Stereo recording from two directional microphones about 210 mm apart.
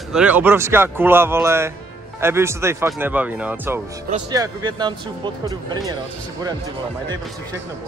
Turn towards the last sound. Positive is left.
turn(degrees=-15)  # may be behind; listen again after turning